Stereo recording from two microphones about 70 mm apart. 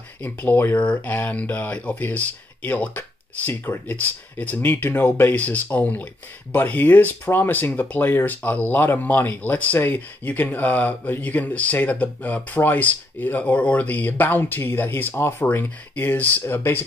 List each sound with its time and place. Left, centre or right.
0.2 s speech: left
5.3 s speech: left